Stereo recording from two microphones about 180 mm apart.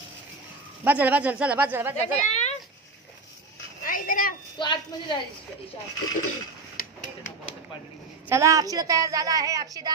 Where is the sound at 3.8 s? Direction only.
50° left (ahead or behind).